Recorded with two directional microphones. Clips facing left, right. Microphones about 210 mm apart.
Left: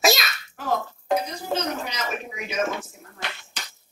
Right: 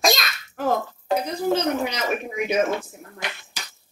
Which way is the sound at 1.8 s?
55° right (ahead or behind).